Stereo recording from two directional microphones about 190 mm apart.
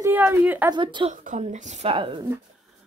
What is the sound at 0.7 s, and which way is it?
Speech, 25° right (ahead or behind).